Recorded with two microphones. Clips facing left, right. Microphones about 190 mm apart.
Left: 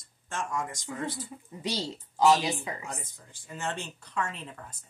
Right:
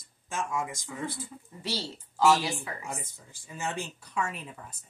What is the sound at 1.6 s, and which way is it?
Speech, 15° left (ahead or behind).